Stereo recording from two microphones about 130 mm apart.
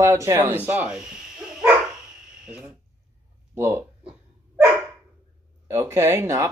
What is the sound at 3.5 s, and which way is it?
Speech, 20° right (ahead or behind).